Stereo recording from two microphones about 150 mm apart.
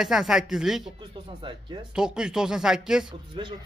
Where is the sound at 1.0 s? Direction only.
30° right (ahead or behind).